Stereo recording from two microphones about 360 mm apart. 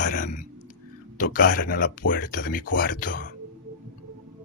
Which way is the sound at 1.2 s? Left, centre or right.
Left.